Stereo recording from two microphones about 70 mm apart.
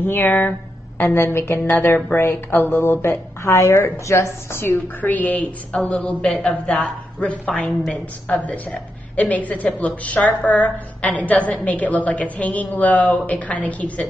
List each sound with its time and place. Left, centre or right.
0.0 s a woman's voice: left